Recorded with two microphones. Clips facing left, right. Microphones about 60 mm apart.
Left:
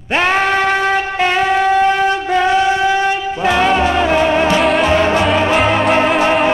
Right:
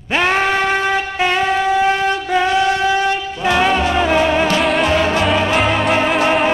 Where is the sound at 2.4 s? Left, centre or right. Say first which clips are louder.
Left 2 dB; centre.